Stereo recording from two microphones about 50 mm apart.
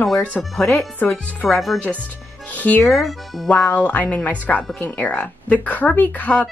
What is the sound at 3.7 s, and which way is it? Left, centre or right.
Speech, left.